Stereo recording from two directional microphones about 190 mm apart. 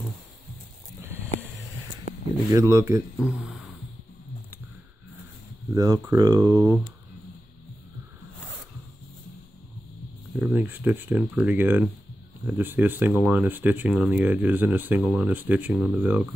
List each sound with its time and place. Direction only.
2.5 s speech: 15° right (ahead or behind)
3.2 s speech: 5° right (ahead or behind)
5.7 s speech: 15° right (ahead or behind)
10.4 s speech: 10° right (ahead or behind)